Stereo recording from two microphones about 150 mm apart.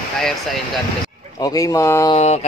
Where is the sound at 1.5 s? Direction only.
20° left (ahead or behind).